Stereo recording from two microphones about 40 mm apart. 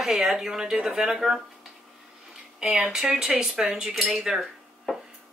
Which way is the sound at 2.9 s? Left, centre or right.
Centre.